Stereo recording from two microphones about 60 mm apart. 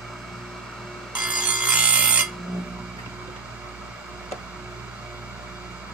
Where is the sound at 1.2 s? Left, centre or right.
Right.